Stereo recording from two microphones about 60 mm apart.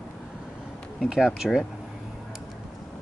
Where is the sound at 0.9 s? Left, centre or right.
Centre.